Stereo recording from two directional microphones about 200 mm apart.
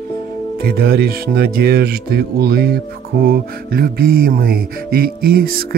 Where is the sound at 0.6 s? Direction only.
50° right (ahead or behind).